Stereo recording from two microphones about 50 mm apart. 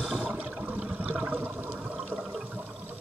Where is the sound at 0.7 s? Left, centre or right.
Centre.